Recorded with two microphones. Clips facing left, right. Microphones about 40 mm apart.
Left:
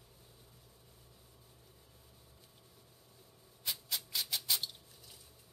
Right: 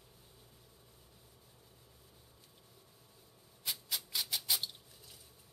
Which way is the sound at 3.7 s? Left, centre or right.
Centre.